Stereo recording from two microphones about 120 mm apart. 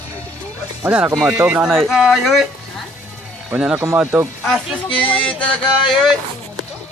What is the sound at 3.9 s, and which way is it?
Speech, 15° right (ahead or behind).